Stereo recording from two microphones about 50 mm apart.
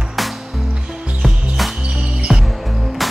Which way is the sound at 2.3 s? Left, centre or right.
Centre.